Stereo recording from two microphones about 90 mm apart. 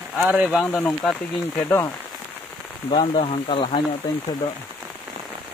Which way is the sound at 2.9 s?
70° left (ahead or behind).